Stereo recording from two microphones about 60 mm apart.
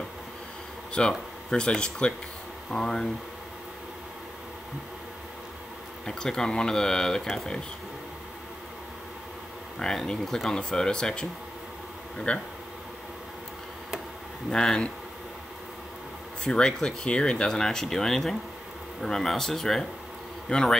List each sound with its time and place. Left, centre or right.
0.9 s speech: centre
6.0 s speech: centre
9.8 s speech: centre
12.3 s speech: left
14.5 s speech: centre
16.4 s speech: centre